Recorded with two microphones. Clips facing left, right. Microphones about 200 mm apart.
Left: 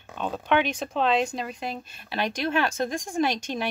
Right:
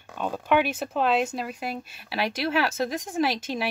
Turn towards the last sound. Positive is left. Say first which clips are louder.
# even
turn(degrees=-5)  # may be behind; listen again after turning